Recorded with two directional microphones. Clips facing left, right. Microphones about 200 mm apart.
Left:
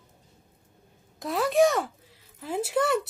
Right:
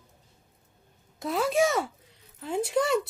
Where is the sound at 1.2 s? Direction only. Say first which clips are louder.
Left 3 dB; centre (ahead or behind).